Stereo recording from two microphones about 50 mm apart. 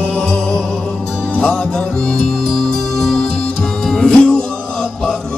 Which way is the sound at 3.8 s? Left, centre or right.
Centre.